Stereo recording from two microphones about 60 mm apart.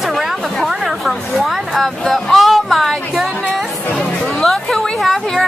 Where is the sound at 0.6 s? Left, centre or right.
Centre.